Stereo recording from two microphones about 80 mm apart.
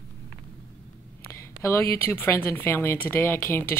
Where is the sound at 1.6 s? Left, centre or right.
Left.